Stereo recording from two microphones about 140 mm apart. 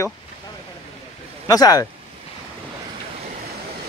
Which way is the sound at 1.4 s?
25° left (ahead or behind).